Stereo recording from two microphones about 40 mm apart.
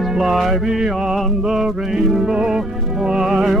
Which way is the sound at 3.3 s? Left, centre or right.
Centre.